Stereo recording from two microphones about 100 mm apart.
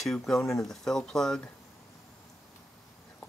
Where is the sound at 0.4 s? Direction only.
30° left (ahead or behind).